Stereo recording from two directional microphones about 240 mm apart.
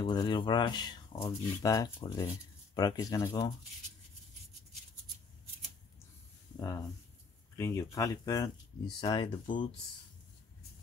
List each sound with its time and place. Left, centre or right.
0.0 s speech: centre
6.5 s speech: centre